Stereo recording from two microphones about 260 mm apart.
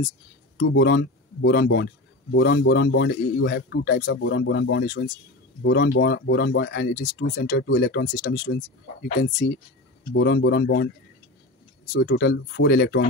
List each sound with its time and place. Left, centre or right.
0.6 s a man's voice: left
11.9 s speech: left